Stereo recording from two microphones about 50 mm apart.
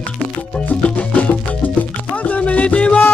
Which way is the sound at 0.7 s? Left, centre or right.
Left.